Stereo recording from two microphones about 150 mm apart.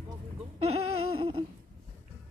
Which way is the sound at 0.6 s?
45° right (ahead or behind).